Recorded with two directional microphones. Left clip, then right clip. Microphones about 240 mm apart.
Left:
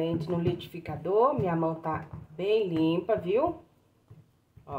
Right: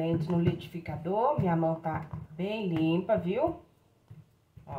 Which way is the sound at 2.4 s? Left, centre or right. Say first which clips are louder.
Left 6 dB; left.